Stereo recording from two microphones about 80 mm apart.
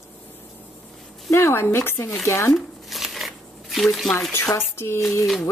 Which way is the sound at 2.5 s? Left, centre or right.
Centre.